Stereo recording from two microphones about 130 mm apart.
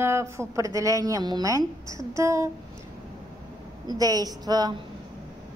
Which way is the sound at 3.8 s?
30° right (ahead or behind).